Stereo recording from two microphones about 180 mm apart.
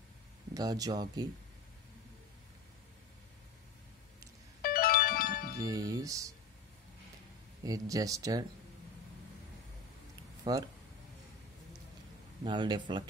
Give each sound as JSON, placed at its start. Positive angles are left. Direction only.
{"t": 0.6, "sound": "speech", "side_deg": -20}
{"t": 4.6, "sound": "music", "side_deg": 55}
{"t": 5.6, "sound": "speech", "side_deg": -20}
{"t": 7.6, "sound": "speech", "side_deg": -20}
{"t": 10.4, "sound": "speech", "side_deg": -20}
{"t": 12.4, "sound": "speech", "side_deg": -25}